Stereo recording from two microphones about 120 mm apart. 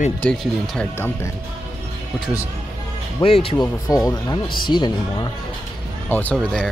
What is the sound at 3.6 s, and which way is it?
Speech, 30° left (ahead or behind).